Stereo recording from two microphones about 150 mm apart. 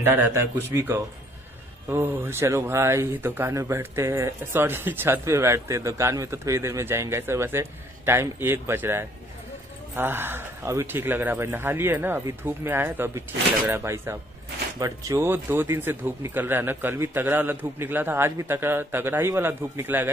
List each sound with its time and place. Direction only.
0.0 s speech: 15° right (ahead or behind)